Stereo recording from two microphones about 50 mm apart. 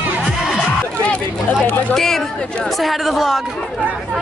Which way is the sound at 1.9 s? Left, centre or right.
Centre.